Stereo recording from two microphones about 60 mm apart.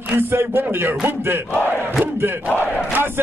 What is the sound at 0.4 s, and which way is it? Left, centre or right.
Music, right.